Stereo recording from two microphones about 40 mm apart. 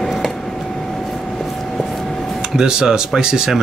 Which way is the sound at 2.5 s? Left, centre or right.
Centre.